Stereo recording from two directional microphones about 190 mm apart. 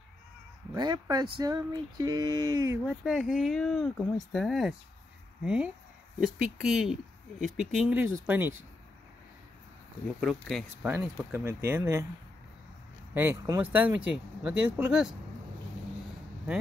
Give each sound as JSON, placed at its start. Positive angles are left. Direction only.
{"t": 0.7, "sound": "speech", "side_deg": -20}
{"t": 2.9, "sound": "speech", "side_deg": -5}
{"t": 10.2, "sound": "speech", "side_deg": 0}
{"t": 10.9, "sound": "speech", "side_deg": -10}
{"t": 13.1, "sound": "speech", "side_deg": -10}